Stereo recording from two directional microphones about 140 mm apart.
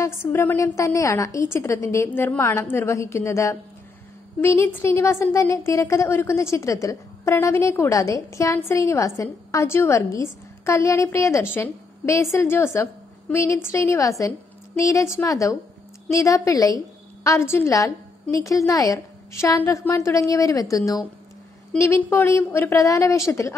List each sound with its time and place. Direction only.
0.0 s a woman's voice: 15° left (ahead or behind)